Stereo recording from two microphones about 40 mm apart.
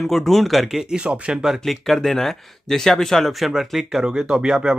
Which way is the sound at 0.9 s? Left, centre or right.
Right.